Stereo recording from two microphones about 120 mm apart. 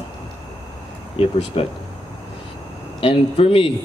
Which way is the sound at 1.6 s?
50° left (ahead or behind).